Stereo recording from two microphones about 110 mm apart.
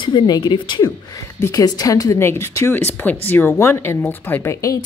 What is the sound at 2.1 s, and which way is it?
Speech, 20° left (ahead or behind).